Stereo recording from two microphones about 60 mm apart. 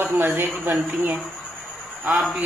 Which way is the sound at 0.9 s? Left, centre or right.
Right.